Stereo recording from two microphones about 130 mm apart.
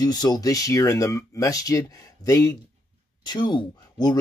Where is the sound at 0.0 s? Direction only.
30° left (ahead or behind).